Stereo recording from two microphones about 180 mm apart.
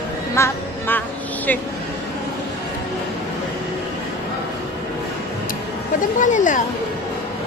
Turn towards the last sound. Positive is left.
turn(degrees=45)  # may be behind; listen again after turning